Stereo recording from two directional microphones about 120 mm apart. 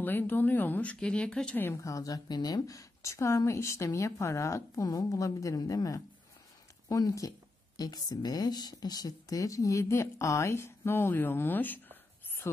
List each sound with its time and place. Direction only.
0.0 s speech: 15° left (ahead or behind)